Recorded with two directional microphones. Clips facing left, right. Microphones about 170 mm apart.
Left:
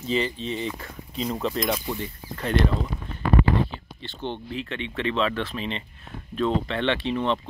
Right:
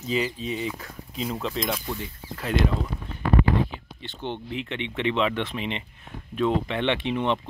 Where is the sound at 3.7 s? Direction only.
15° right (ahead or behind).